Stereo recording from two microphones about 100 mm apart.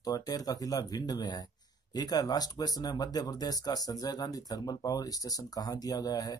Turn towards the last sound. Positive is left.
turn(degrees=40)  # may be behind; listen again after turning